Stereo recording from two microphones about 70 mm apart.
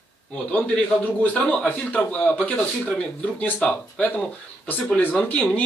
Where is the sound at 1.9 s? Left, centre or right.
Left.